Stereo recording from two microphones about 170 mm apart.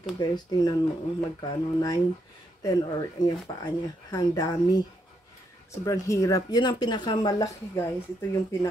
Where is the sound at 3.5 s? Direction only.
25° left (ahead or behind).